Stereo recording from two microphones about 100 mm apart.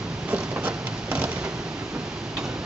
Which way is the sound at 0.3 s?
10° right (ahead or behind).